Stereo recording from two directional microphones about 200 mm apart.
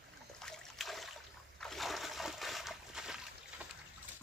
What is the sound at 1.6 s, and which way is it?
Splash, centre (ahead or behind).